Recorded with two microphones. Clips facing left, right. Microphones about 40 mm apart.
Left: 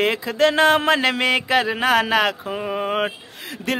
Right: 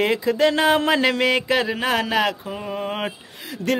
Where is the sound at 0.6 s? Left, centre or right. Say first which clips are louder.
Left 2 dB; centre.